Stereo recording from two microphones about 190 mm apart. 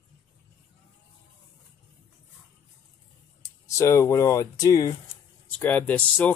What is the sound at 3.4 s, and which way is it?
Speech, 15° left (ahead or behind).